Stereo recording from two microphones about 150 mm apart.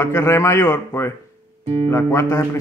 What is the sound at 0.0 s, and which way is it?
A man's voice, 15° left (ahead or behind).